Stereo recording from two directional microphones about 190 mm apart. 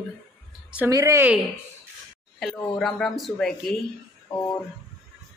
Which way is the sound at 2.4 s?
Centre (ahead or behind).